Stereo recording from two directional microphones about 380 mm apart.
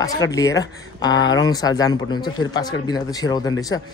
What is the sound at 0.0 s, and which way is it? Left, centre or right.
Speech, centre.